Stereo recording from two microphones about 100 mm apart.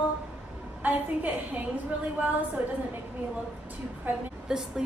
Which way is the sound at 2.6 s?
15° right (ahead or behind).